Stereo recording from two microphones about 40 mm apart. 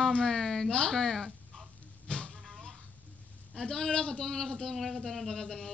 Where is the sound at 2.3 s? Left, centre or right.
Centre.